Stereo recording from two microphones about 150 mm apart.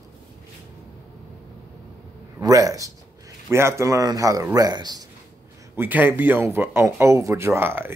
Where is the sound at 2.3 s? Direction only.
25° right (ahead or behind).